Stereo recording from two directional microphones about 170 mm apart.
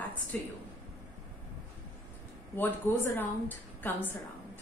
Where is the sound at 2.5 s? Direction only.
10° left (ahead or behind).